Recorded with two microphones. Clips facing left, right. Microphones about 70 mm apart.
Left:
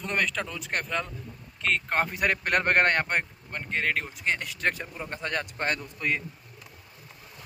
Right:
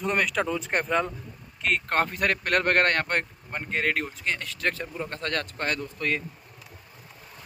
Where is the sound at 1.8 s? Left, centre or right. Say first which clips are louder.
Right 3 dB; centre.